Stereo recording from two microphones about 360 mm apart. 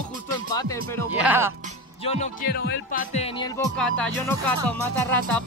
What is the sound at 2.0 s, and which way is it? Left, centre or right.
Speech, centre.